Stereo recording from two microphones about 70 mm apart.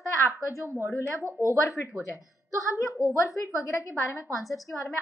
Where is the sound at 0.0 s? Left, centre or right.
Left.